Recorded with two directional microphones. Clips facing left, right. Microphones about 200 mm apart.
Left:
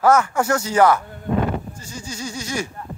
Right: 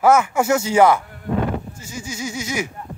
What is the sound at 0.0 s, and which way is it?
Speech, 10° right (ahead or behind).